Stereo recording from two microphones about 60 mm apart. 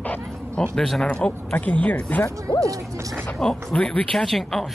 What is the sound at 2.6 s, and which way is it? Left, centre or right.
Speech, right.